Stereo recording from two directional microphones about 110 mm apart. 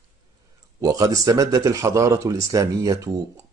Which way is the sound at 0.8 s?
30° right (ahead or behind).